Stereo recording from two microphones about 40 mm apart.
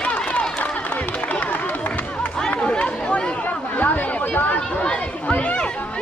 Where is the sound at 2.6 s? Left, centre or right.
Left.